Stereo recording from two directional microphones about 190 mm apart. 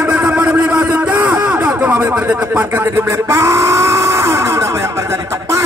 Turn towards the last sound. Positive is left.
turn(degrees=-15)  # may be behind; listen again after turning